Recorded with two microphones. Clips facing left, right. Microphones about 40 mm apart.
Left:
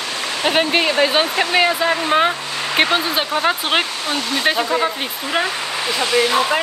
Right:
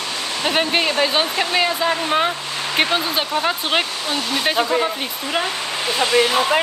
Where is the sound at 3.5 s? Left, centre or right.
Centre.